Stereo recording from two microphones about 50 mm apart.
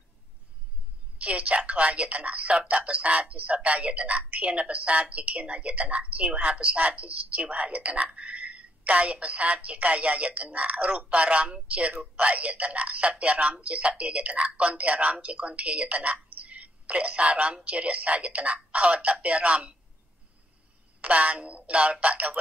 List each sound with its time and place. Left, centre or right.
1.1 s a woman's voice: right
21.0 s a woman's voice: right